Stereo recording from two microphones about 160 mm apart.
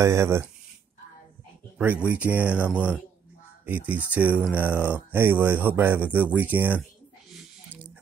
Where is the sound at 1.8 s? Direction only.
10° right (ahead or behind).